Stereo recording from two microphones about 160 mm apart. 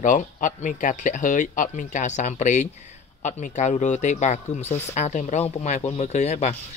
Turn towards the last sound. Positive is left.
turn(degrees=45)  # may be behind; listen again after turning